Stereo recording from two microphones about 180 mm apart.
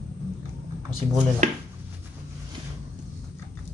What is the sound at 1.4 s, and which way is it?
Speech, 45° right (ahead or behind).